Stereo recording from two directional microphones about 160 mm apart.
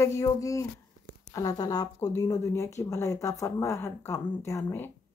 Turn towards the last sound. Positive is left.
turn(degrees=15)  # may be behind; listen again after turning